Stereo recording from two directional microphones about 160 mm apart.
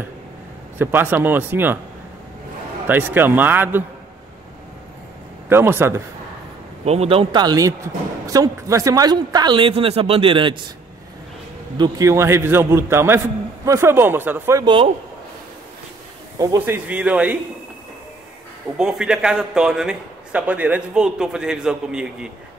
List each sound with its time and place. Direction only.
0.7 s a man's voice: 10° right (ahead or behind)
2.9 s a man's voice: 10° right (ahead or behind)
5.5 s a man's voice: 15° right (ahead or behind)
6.8 s a woman's voice: 40° right (ahead or behind)
11.8 s a man's voice: 20° right (ahead or behind)
14.6 s speech: 30° right (ahead or behind)
16.3 s a man's voice: 20° right (ahead or behind)
18.8 s a man's voice: 5° right (ahead or behind)